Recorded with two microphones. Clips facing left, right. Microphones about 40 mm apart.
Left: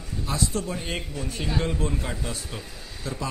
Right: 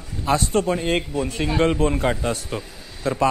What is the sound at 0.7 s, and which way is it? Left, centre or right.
Speech, right.